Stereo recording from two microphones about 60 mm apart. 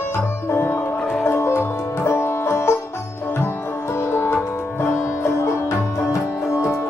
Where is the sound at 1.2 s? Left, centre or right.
Left.